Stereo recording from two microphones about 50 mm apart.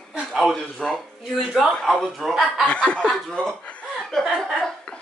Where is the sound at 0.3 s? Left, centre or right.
Centre.